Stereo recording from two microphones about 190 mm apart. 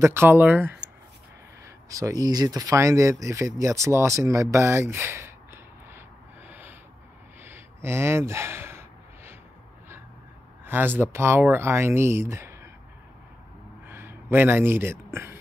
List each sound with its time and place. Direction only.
0.0 s speech: 10° right (ahead or behind)
1.9 s speech: 15° right (ahead or behind)
7.4 s gasp: 10° right (ahead or behind)
10.6 s speech: 10° right (ahead or behind)
13.8 s a sound: 10° right (ahead or behind)